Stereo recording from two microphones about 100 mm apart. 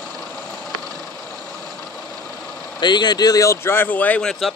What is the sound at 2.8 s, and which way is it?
Speech, 45° left (ahead or behind).